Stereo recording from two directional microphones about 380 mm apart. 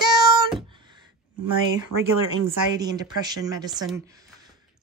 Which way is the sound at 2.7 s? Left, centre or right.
Centre.